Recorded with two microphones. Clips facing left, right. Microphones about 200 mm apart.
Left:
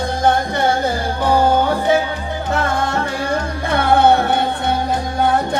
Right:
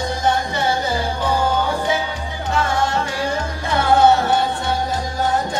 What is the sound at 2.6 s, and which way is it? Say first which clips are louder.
Music: left 1 dB; 55° left (ahead or behind).